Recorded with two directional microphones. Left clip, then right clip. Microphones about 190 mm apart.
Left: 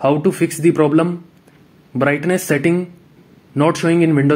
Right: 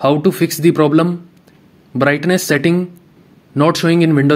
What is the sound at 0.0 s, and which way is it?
Speech, 25° right (ahead or behind).